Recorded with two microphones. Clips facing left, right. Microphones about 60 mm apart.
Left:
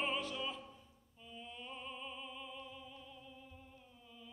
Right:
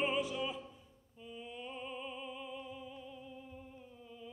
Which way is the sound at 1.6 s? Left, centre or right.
Centre.